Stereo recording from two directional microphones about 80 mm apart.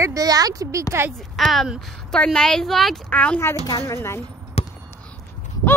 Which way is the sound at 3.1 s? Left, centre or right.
Centre.